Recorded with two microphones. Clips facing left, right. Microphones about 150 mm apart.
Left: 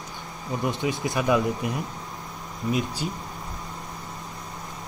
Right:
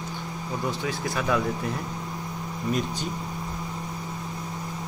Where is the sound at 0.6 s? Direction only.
20° left (ahead or behind).